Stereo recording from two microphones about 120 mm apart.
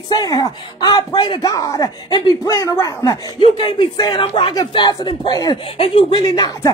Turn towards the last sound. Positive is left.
turn(degrees=35)  # may be behind; listen again after turning